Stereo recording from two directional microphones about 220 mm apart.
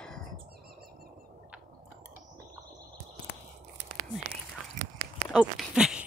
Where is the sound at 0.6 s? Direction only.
45° right (ahead or behind).